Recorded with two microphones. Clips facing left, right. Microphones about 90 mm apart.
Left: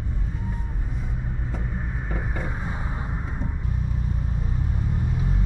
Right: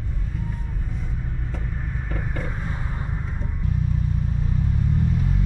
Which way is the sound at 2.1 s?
15° left (ahead or behind).